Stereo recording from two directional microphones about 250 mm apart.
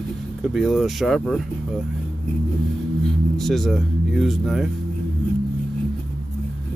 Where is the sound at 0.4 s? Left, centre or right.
Centre.